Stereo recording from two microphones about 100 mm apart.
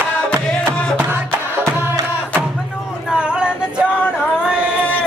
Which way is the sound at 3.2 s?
10° right (ahead or behind).